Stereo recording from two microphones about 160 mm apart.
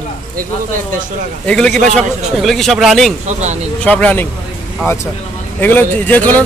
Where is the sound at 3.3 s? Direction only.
45° right (ahead or behind).